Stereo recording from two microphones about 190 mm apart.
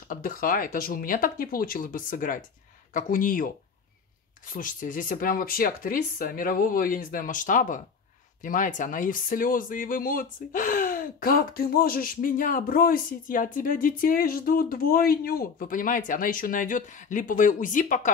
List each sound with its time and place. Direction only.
0.1 s speech: 45° left (ahead or behind)